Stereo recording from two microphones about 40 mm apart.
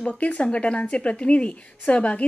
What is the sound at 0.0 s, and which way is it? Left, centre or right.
Speech, left.